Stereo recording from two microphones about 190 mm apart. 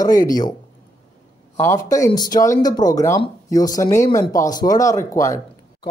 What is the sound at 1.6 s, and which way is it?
Speech, 15° left (ahead or behind).